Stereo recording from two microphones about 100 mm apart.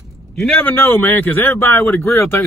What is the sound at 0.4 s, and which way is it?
Speech, 10° left (ahead or behind).